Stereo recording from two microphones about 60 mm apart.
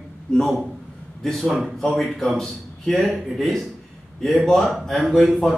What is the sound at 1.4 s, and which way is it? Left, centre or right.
A man's voice, centre.